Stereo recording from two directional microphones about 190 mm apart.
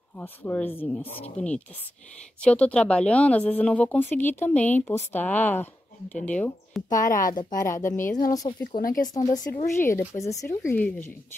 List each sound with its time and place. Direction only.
0.2 s speech: 10° left (ahead or behind)
7.1 s speech: 45° left (ahead or behind)
7.9 s a woman's voice: 5° left (ahead or behind)
8.4 s speech: 20° left (ahead or behind)
8.7 s speech: 45° left (ahead or behind)
9.1 s speech: 20° left (ahead or behind)